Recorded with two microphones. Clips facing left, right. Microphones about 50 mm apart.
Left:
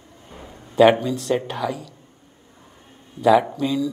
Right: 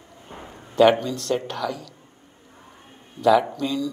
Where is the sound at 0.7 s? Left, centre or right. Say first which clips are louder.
Left 2 dB; centre.